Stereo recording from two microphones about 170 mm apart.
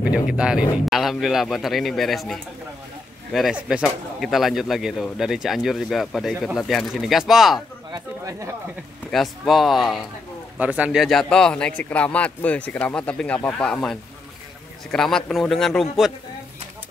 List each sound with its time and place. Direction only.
0.0 s speech: 5° right (ahead or behind)
7.9 s speech: 20° right (ahead or behind)
9.1 s a man's voice: centre (ahead or behind)